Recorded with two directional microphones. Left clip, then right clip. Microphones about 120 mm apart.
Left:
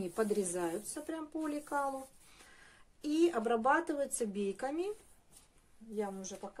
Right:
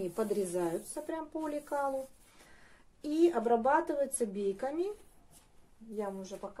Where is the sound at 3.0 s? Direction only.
50° left (ahead or behind); by 4.8 s 70° left (ahead or behind).